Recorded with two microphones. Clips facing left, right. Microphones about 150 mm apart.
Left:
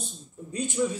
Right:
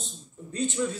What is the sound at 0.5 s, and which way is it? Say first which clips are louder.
Speech: left 1 dB; 15° left (ahead or behind).